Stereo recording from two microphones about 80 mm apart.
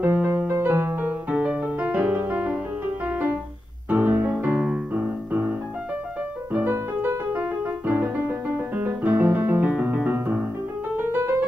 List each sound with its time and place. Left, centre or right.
0.0 s music: right
1.3 s music: centre
3.9 s music: right
6.5 s music: right